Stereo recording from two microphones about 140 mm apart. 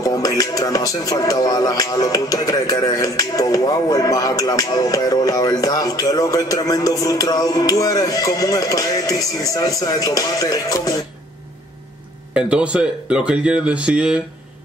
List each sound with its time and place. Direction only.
0.0 s speech: 25° left (ahead or behind)
12.4 s speech: 10° right (ahead or behind)